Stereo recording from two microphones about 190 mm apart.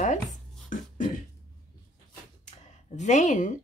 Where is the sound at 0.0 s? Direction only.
40° left (ahead or behind).